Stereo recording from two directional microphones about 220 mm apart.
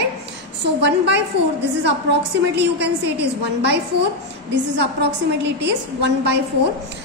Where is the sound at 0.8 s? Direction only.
50° right (ahead or behind).